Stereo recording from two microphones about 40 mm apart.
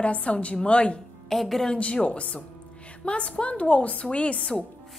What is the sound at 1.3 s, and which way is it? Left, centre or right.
Speech, centre.